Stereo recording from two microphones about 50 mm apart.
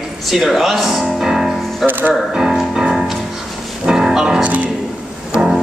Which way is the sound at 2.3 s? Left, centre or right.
Centre.